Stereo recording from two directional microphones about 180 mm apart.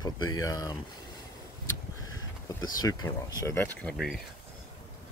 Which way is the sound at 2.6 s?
20° left (ahead or behind).